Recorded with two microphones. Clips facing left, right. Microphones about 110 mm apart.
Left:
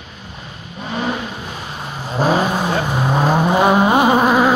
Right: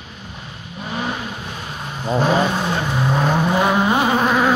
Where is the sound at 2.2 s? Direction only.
10° left (ahead or behind).